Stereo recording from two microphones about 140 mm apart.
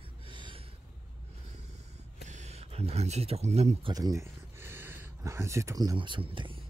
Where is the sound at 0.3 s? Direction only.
35° right (ahead or behind).